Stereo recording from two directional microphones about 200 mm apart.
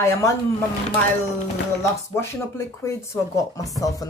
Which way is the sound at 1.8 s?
15° left (ahead or behind).